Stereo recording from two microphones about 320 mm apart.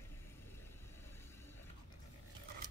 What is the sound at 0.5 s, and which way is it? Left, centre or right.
Vehicle, centre.